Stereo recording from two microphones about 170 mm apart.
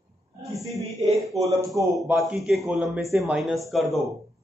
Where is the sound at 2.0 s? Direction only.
Centre (ahead or behind).